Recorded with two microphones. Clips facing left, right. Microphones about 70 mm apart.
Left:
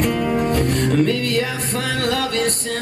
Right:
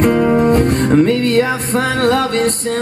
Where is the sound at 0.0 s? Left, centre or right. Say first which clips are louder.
Right 7 dB; right.